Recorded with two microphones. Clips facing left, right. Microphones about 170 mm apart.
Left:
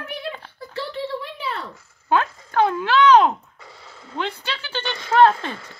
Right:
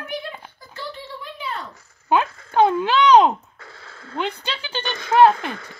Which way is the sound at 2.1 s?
15° right (ahead or behind).